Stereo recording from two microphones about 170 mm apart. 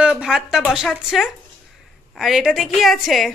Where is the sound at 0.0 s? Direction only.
5° right (ahead or behind).